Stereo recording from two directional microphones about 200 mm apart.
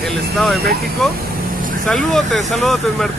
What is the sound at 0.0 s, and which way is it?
Speech, centre (ahead or behind).